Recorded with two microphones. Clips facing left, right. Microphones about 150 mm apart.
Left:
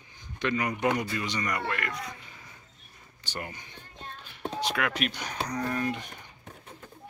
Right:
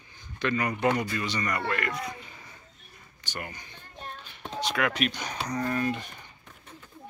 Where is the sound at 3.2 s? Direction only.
25° left (ahead or behind).